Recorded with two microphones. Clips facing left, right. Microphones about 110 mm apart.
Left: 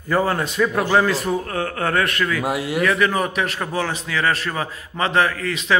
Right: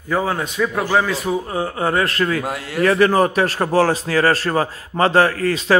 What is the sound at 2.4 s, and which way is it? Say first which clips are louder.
Speech: left 3 dB; 10° left (ahead or behind).